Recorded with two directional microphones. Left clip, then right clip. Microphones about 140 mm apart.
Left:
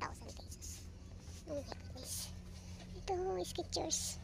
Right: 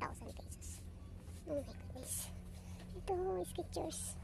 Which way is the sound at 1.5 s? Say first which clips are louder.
Right 2 dB; 30° right (ahead or behind).